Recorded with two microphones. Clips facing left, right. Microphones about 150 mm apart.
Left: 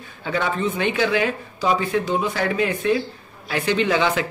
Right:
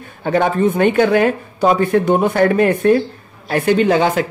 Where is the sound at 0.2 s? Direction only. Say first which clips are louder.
Right 8 dB; 50° right (ahead or behind).